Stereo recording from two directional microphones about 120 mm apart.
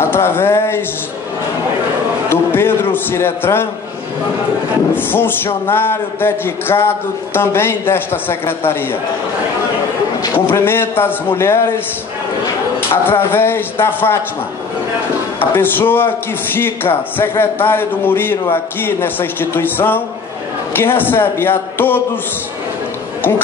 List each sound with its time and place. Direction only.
0.0 s speech: 20° left (ahead or behind)
2.2 s a sound: 20° left (ahead or behind)
4.9 s speech: 15° left (ahead or behind)
10.4 s speech: 20° left (ahead or behind)
12.9 s speech: 20° left (ahead or behind)
15.3 s a man's voice: 15° left (ahead or behind)